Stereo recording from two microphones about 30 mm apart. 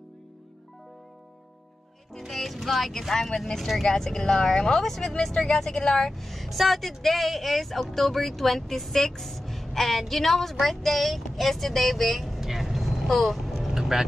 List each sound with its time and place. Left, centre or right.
2.1 s speech: centre
3.5 s speech: centre
3.8 s speech: centre
6.1 s speech: centre
12.4 s vehicle: centre